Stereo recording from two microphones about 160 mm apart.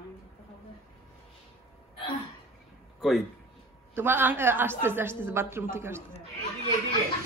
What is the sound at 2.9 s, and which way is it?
Speech, centre (ahead or behind).